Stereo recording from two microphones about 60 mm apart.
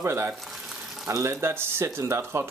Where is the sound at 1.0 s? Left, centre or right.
Right.